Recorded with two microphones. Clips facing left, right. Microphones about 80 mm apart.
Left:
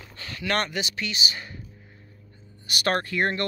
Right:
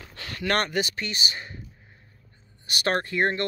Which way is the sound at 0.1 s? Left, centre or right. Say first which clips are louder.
Right 1 dB; right.